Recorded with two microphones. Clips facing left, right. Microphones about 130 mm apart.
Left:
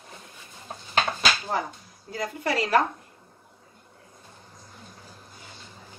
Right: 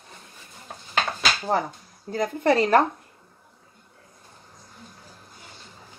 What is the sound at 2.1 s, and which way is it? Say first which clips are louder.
Speech: right 7 dB; 50° right (ahead or behind).